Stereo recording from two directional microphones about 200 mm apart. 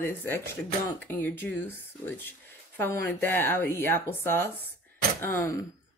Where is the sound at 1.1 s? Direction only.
10° left (ahead or behind).